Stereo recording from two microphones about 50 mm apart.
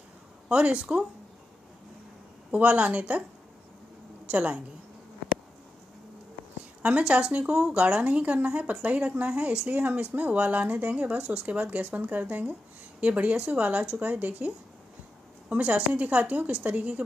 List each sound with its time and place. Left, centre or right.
0.5 s speech: right
2.5 s speech: right
4.3 s speech: right
6.8 s speech: right
15.5 s speech: right